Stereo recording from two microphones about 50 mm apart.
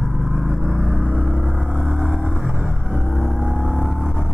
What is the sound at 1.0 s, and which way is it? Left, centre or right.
Vehicle, right.